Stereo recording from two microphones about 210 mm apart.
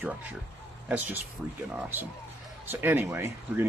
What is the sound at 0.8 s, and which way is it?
Speech, 10° right (ahead or behind).